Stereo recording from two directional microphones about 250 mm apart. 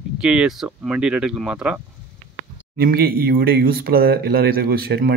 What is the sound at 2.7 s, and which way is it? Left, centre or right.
Speech, right.